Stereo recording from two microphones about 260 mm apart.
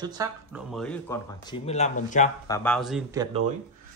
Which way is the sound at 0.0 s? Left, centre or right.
Centre.